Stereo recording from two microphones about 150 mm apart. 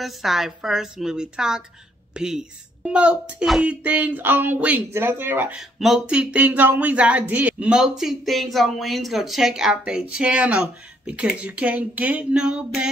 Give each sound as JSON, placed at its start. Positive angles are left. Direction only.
{"t": 0.0, "sound": "a woman's voice", "side_deg": 0}
{"t": 5.6, "sound": "speech", "side_deg": 0}